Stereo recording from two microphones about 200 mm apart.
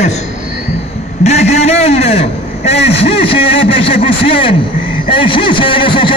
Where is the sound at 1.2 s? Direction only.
35° left (ahead or behind).